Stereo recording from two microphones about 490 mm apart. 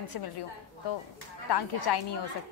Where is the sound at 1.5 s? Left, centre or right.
Left.